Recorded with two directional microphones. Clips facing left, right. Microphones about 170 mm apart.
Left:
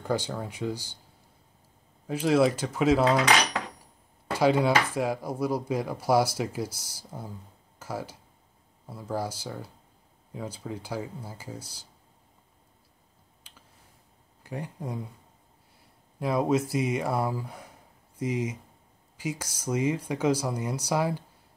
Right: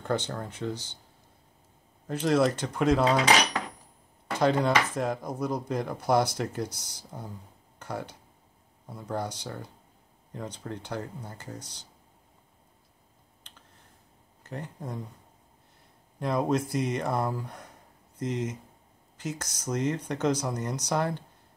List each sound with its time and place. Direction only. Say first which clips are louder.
0.0 s speech: left 1 dB; 10° left (ahead or behind)
2.0 s speech: left 2 dB; 10° left (ahead or behind)
4.3 s speech: left 2 dB; 5° left (ahead or behind)
13.4 s finger snapping: even; 5° left (ahead or behind)
14.4 s speech: left 2 dB; 10° left (ahead or behind)
16.2 s speech: left 2 dB; 5° left (ahead or behind)